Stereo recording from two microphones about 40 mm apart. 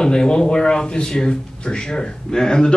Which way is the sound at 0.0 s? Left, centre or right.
Centre.